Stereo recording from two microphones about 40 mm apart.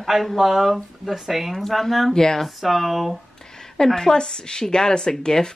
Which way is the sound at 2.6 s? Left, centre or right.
Centre.